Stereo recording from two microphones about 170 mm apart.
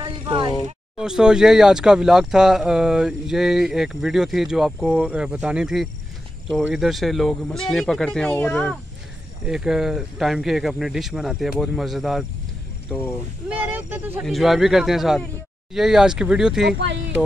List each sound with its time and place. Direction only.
0.0 s a sound: 30° right (ahead or behind)
0.9 s speech: 5° right (ahead or behind)
13.5 s speech: 10° right (ahead or behind)
14.2 s speech: centre (ahead or behind)
16.7 s speech: 90° right